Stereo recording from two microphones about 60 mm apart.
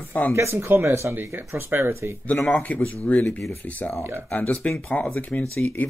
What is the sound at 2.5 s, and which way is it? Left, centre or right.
Speech, left.